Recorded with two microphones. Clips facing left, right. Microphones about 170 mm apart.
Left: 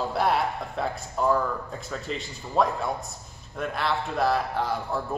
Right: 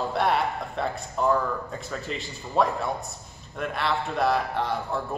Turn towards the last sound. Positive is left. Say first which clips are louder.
# even
turn(degrees=0)  # may be behind; listen again after turning